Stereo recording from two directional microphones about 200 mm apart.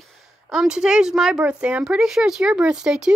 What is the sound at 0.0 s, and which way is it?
A woman's voice, centre (ahead or behind).